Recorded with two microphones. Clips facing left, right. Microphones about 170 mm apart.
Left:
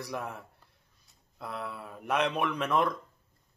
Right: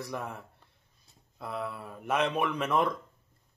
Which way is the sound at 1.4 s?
Centre (ahead or behind).